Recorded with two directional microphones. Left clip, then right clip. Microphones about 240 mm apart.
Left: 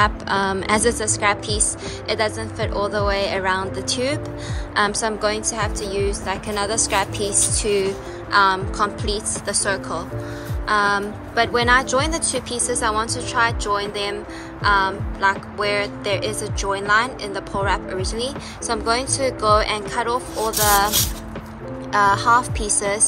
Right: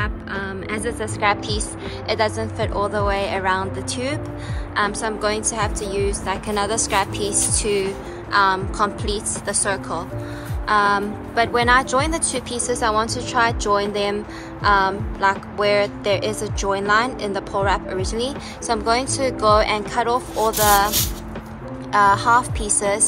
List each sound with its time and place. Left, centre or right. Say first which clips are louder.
0.0 s speech: left 8 dB; centre
21.9 s speech: right 1 dB; centre